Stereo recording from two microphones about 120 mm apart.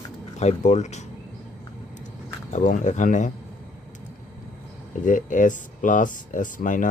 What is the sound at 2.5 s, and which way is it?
Speech, 90° left.